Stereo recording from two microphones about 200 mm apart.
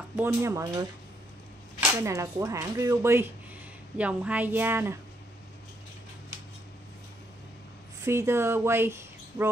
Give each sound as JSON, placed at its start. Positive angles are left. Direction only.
{"t": 0.1, "sound": "speech", "side_deg": -10}
{"t": 2.0, "sound": "speech", "side_deg": -15}
{"t": 8.0, "sound": "speech", "side_deg": -15}